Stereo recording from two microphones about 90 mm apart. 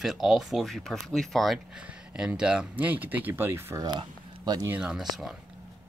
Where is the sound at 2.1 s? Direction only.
10° right (ahead or behind); by 3.8 s 25° right (ahead or behind).